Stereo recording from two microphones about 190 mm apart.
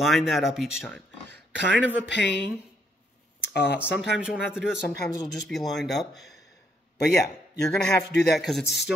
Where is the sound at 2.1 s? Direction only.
65° left (ahead or behind).